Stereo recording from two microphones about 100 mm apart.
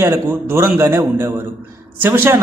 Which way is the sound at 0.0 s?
25° right (ahead or behind).